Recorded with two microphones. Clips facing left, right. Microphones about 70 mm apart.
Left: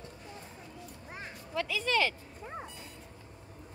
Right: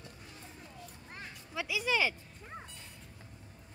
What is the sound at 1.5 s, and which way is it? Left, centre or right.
Speech, centre.